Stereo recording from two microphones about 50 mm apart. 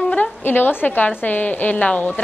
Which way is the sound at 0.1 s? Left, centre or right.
Left.